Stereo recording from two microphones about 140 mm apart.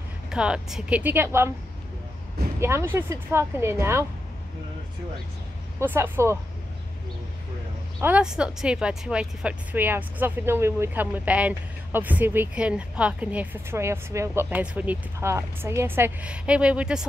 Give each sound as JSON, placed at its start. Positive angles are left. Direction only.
{"t": 0.3, "sound": "speech", "side_deg": -5}
{"t": 2.6, "sound": "speech", "side_deg": -15}
{"t": 5.8, "sound": "speech", "side_deg": -15}
{"t": 8.0, "sound": "speech", "side_deg": -10}